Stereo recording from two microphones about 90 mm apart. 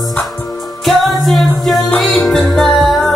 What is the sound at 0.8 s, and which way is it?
Music, centre (ahead or behind).